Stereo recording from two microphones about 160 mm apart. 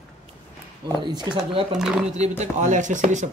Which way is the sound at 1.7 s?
5° right (ahead or behind).